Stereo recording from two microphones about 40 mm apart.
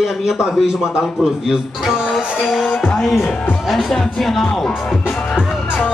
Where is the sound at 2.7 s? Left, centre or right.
Left.